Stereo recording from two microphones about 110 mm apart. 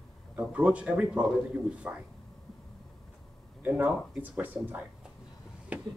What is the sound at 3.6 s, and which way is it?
Speech, 20° right (ahead or behind).